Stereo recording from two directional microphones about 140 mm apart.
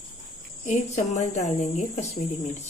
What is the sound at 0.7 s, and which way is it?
Speech, 60° left (ahead or behind).